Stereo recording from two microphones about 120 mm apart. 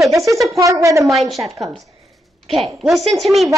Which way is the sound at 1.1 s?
Centre (ahead or behind).